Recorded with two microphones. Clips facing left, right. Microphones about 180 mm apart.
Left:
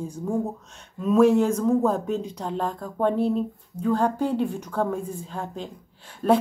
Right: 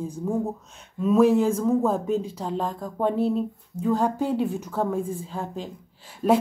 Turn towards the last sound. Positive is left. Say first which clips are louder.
# even
turn(degrees=-5)  # may be behind; listen again after turning